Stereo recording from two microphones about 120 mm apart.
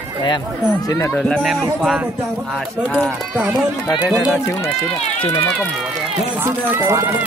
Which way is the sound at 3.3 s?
15° right (ahead or behind).